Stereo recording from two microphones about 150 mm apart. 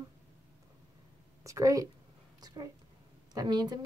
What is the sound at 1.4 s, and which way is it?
Speech, 20° right (ahead or behind).